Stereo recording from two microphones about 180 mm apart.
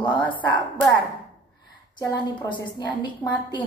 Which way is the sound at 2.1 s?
25° left (ahead or behind).